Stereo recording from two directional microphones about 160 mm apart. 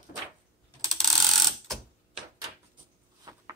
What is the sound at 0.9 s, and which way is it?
Mechanisms, centre (ahead or behind).